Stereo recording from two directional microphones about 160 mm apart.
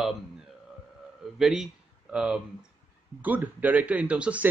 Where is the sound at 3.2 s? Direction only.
10° right (ahead or behind).